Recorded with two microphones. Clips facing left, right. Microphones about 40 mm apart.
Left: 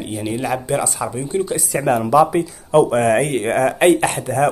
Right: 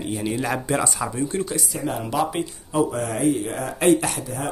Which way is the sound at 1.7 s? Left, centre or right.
Left.